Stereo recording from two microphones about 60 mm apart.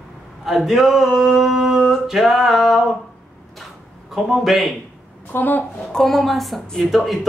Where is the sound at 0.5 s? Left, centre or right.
Centre.